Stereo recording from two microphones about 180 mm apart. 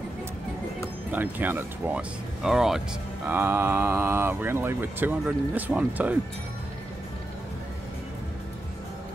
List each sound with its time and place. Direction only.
1.1 s speech: 10° right (ahead or behind)